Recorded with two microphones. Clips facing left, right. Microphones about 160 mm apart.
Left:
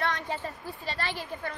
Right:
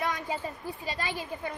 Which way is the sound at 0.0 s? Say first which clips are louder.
Even; 10° right (ahead or behind).